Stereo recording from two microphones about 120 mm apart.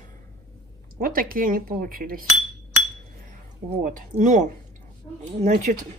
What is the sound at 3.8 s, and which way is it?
Speech, 90° right.